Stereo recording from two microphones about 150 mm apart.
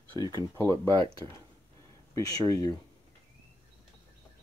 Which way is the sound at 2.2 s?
25° left (ahead or behind).